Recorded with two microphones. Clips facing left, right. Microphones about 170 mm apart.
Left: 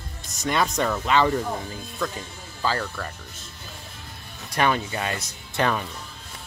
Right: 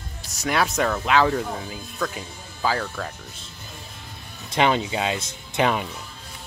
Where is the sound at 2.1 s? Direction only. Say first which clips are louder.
Right 1 dB; 10° right (ahead or behind).